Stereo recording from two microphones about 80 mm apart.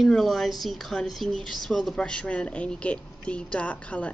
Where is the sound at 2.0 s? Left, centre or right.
Centre.